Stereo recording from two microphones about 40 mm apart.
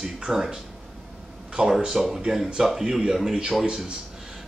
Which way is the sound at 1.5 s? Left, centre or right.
Centre.